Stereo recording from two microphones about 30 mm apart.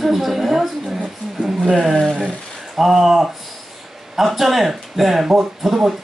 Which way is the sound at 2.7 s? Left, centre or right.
Centre.